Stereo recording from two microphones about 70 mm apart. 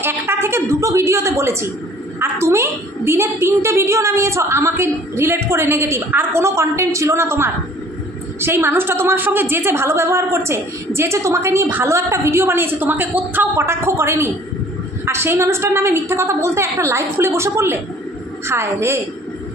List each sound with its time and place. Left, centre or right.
0.0 s a woman's voice: right